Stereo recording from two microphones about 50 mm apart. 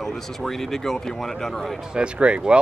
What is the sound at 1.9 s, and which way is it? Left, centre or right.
Speech, right.